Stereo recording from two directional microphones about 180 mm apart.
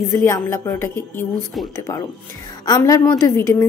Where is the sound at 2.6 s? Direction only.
20° left (ahead or behind).